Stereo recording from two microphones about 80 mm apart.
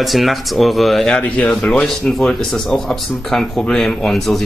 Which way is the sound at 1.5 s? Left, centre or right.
Centre.